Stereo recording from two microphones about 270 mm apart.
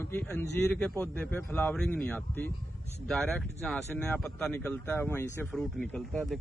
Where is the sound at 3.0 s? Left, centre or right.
Centre.